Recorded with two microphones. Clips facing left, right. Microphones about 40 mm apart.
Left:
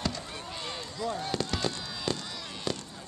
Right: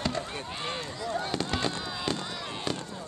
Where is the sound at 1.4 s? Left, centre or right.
Centre.